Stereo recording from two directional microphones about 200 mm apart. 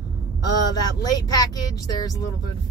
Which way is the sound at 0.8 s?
20° left (ahead or behind).